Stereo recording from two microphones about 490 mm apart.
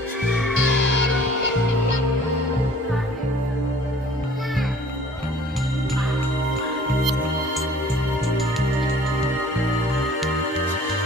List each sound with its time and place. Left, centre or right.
0.3 s music: centre
0.6 s music: right